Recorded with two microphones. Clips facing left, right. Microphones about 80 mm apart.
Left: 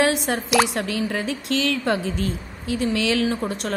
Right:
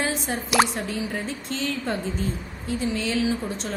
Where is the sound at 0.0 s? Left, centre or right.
Left.